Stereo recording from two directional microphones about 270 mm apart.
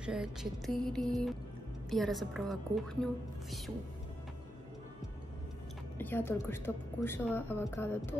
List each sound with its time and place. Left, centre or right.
0.0 s a woman's voice: centre
5.9 s speech: centre